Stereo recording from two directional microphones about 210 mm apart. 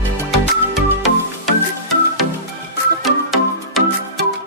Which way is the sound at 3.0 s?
Centre (ahead or behind).